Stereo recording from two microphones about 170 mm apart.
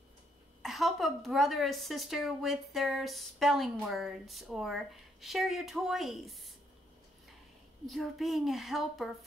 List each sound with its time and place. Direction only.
0.6 s a woman's voice: centre (ahead or behind)
7.8 s a woman's voice: centre (ahead or behind)